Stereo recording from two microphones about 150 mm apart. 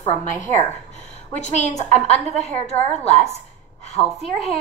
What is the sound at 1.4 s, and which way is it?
A woman's voice, 50° left (ahead or behind).